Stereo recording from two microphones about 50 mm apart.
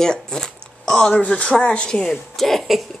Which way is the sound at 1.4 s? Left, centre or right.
Centre.